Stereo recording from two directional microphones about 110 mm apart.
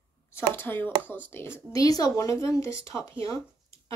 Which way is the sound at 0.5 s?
20° left (ahead or behind).